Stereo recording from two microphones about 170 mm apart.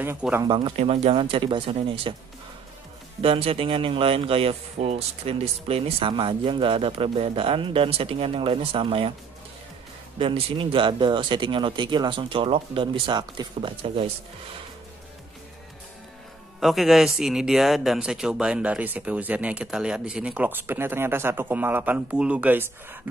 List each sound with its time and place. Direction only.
0.0 s a man's voice: 10° right (ahead or behind)
0.5 s speech: 30° right (ahead or behind)
3.2 s speech: 35° right (ahead or behind)
10.1 s speech: 30° right (ahead or behind)
16.5 s a man's voice: centre (ahead or behind)